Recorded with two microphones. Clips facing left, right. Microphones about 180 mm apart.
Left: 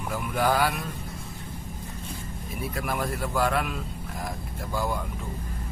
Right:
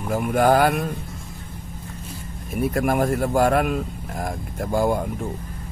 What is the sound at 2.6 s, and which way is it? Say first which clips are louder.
Speech: right 10 dB; 50° right (ahead or behind).